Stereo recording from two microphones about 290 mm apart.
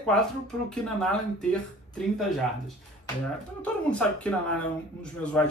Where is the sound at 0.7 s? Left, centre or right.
Centre.